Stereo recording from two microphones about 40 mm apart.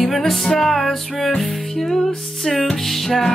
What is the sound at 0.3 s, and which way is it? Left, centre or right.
Music, centre.